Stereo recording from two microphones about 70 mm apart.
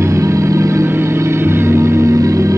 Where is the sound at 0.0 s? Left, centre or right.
Right.